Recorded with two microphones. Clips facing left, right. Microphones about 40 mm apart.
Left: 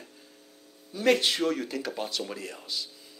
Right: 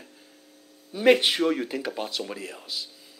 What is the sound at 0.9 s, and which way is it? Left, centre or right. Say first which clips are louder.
Speech: right 4 dB; right.